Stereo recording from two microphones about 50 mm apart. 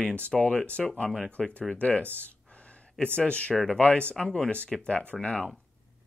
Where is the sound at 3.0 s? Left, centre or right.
Left.